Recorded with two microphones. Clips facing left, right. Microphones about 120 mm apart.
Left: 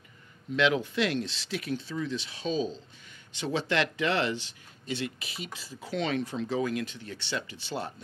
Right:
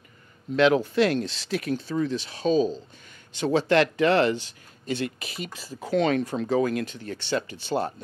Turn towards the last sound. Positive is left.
turn(degrees=-45)  # may be behind; listen again after turning